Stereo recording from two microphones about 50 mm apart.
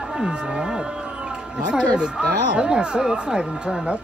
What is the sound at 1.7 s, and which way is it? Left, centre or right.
Speech, centre.